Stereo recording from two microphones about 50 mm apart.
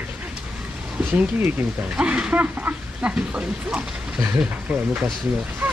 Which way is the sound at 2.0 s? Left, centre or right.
Right.